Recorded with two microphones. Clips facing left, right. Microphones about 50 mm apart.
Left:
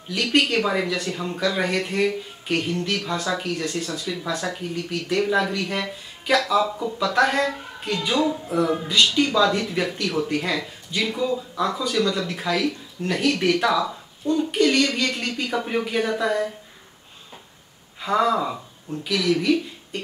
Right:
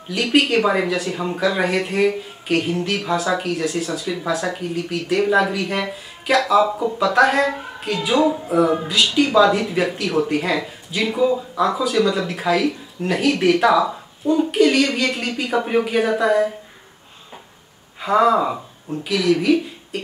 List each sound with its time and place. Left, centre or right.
0.1 s speech: centre
6.7 s speech: centre
7.0 s speech: centre
18.0 s speech: centre